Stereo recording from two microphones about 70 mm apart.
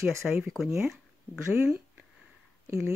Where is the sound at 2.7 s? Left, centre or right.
Right.